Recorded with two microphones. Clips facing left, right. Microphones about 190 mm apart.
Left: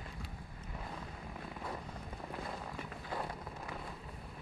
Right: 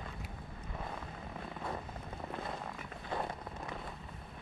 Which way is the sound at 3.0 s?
20° right (ahead or behind).